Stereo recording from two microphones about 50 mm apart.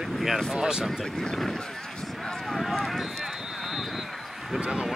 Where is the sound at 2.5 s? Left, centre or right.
Centre.